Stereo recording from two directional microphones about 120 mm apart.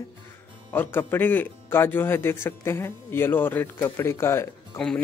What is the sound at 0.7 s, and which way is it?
Speech, 15° left (ahead or behind).